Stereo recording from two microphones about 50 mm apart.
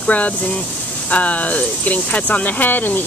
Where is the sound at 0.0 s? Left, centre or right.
Left.